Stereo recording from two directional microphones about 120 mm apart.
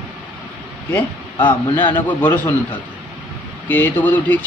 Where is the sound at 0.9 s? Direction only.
15° left (ahead or behind).